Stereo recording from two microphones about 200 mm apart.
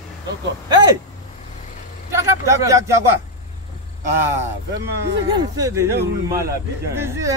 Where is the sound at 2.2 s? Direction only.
15° right (ahead or behind).